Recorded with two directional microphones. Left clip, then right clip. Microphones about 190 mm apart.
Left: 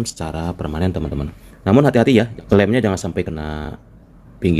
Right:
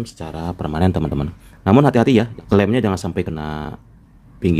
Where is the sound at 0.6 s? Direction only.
20° right (ahead or behind).